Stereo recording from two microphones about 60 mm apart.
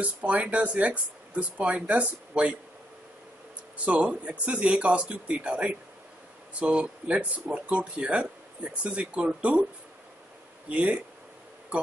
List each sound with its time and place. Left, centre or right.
0.0 s speech: right
3.7 s speech: right
10.7 s speech: right